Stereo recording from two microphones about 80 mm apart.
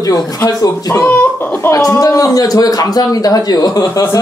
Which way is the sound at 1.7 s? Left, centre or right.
Left.